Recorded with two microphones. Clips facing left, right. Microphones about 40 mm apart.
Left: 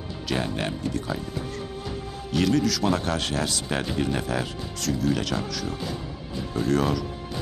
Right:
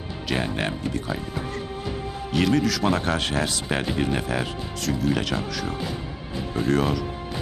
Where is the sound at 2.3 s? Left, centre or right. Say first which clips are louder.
Right 1 dB; right.